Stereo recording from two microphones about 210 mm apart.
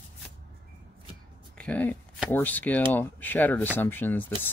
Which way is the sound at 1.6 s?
5° left (ahead or behind).